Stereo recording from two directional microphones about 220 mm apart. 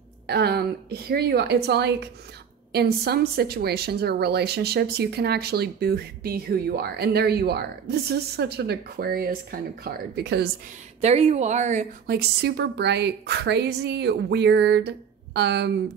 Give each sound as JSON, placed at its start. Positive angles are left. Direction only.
{"t": 0.3, "sound": "a woman's voice", "side_deg": -45}
{"t": 11.0, "sound": "speech", "side_deg": -30}
{"t": 12.1, "sound": "a woman's voice", "side_deg": -50}